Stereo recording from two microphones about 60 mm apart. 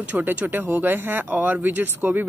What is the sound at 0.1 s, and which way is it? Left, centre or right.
Speech, right.